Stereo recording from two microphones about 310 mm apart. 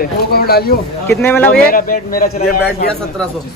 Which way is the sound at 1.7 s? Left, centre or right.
Left.